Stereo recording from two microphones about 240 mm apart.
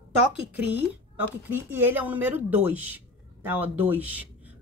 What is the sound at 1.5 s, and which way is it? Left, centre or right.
A woman's voice, centre.